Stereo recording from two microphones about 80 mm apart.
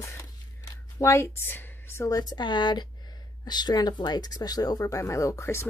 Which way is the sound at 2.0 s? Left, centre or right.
Left.